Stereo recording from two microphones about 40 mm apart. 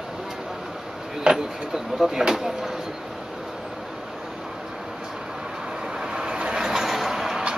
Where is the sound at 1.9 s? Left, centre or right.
Centre.